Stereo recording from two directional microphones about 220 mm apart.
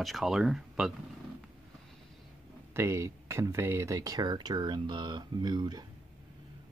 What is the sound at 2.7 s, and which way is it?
Speech, 15° right (ahead or behind).